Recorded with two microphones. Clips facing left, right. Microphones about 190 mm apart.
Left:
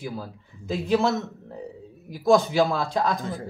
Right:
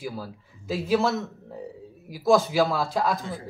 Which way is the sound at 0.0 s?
5° right (ahead or behind).